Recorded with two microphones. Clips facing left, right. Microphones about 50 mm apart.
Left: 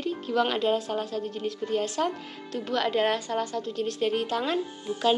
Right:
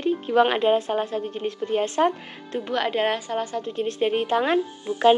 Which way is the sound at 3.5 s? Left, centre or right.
Right.